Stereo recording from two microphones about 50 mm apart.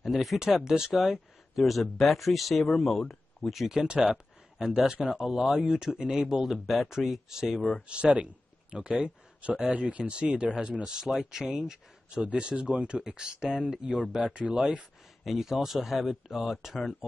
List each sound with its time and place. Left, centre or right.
0.0 s speech: centre
3.8 s speech: centre
7.9 s speech: right
10.8 s speech: centre; by 14.7 s right
14.7 s speech: centre